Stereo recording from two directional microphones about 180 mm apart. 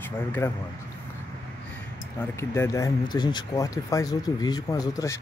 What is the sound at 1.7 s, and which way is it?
Speech, 15° left (ahead or behind).